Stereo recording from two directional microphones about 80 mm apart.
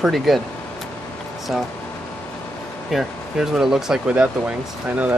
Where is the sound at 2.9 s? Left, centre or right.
Centre.